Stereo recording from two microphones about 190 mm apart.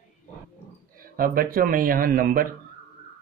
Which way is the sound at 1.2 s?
50° right (ahead or behind).